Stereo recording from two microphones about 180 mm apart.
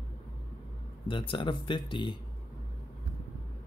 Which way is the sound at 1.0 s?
30° left (ahead or behind).